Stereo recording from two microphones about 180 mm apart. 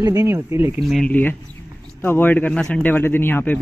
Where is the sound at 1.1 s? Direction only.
10° left (ahead or behind).